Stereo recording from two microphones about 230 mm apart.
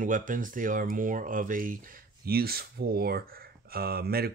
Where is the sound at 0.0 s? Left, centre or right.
Right.